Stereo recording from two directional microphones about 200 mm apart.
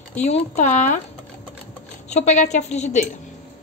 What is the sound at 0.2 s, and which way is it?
Speech, 35° left (ahead or behind).